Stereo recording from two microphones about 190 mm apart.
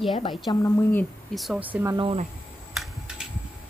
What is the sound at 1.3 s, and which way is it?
Speech, centre (ahead or behind).